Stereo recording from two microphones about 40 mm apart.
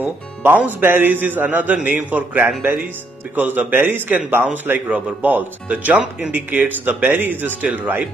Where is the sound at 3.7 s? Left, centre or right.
Right.